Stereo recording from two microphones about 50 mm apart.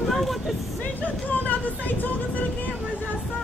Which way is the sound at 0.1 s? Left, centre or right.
Centre.